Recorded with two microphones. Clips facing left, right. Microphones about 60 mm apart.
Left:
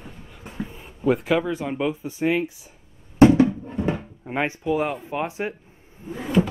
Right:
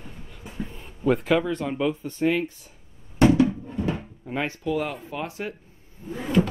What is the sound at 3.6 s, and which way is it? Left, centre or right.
Drawer open or close, left.